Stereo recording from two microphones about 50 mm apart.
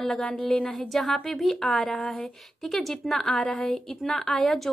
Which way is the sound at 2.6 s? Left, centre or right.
Centre.